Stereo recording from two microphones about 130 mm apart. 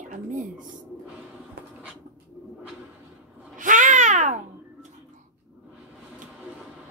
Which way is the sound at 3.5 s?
80° right.